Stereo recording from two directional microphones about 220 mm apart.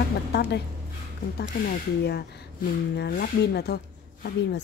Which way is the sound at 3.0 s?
45° left (ahead or behind).